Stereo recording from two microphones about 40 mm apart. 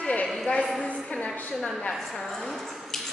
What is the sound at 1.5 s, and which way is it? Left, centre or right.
A woman's voice, centre.